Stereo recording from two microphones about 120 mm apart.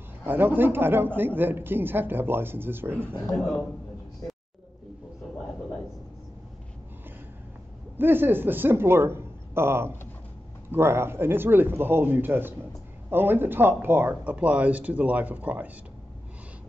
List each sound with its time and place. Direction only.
0.3 s speech: 15° right (ahead or behind)
3.3 s a man's voice: 10° left (ahead or behind)
8.0 s speech: 15° right (ahead or behind)